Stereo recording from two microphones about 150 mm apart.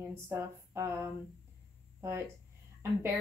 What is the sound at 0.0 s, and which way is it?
Speech, 20° right (ahead or behind).